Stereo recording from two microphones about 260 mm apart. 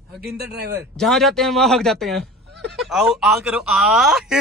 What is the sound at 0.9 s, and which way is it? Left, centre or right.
Speech, centre.